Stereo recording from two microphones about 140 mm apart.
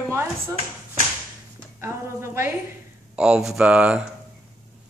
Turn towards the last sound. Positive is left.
turn(degrees=-5)  # may be behind; listen again after turning